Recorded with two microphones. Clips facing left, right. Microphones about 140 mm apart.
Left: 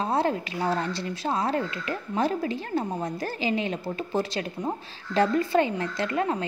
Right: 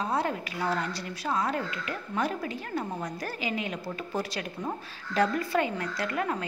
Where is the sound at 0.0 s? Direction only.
30° left (ahead or behind).